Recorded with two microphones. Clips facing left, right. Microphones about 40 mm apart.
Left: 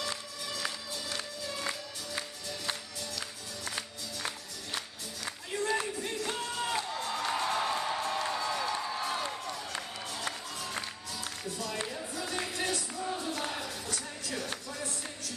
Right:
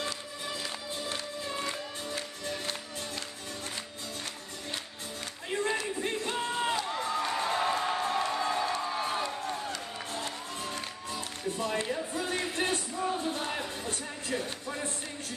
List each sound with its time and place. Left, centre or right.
0.7 s music: right
5.5 s a sound: right
5.9 s music: right
11.1 s music: right